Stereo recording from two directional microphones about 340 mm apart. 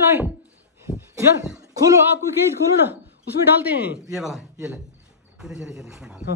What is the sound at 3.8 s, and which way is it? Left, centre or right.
A man's voice, centre.